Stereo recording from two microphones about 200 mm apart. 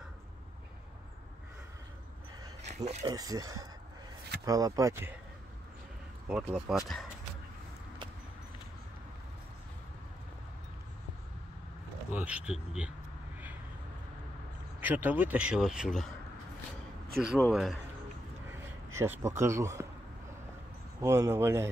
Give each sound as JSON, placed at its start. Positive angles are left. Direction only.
{"t": 2.7, "sound": "speech", "side_deg": -35}
{"t": 3.2, "sound": "speech", "side_deg": -20}
{"t": 6.2, "sound": "speech", "side_deg": -5}
{"t": 12.1, "sound": "speech", "side_deg": -5}
{"t": 14.8, "sound": "speech", "side_deg": -10}
{"t": 17.2, "sound": "speech", "side_deg": 0}
{"t": 18.5, "sound": "a sound", "side_deg": -15}
{"t": 21.0, "sound": "speech", "side_deg": -15}